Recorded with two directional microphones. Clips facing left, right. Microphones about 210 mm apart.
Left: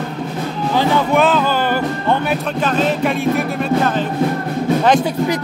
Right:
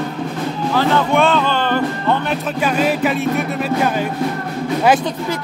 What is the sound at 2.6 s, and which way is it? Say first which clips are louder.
Speech: right 1 dB; 10° right (ahead or behind).